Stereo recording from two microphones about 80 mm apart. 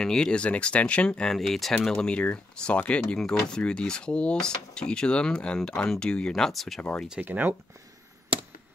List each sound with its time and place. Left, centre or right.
0.0 s speech: centre
6.8 s speech: centre
7.1 s speech: centre